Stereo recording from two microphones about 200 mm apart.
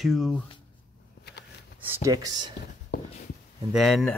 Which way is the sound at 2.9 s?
50° left (ahead or behind).